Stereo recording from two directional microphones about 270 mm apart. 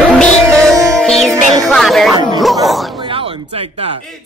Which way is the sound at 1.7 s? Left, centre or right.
Centre.